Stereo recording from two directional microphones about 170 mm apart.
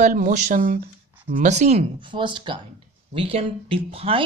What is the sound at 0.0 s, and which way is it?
Speech, 45° right (ahead or behind).